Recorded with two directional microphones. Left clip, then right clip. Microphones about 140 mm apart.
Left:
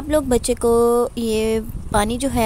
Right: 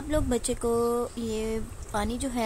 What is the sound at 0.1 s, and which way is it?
Speech, 50° left (ahead or behind).